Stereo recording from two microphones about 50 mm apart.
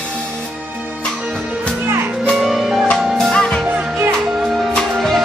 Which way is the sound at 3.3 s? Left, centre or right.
Centre.